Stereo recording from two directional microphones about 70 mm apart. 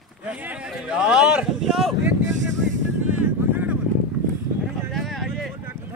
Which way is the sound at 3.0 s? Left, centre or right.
Right.